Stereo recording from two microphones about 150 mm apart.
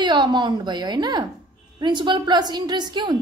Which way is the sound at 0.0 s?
30° right (ahead or behind).